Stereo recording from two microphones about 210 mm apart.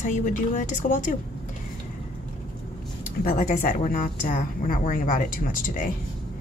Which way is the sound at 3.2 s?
40° left (ahead or behind).